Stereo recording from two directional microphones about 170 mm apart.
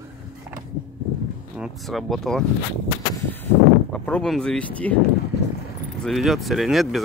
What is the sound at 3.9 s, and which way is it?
Speech, 10° left (ahead or behind).